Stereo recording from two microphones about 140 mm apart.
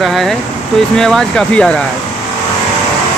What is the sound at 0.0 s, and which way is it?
Speech, centre (ahead or behind).